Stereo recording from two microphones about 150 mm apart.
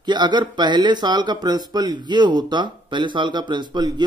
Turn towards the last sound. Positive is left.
turn(degrees=-30)  # may be behind; listen again after turning